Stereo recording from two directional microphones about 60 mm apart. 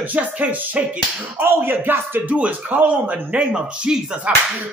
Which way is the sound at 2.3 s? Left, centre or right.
Right.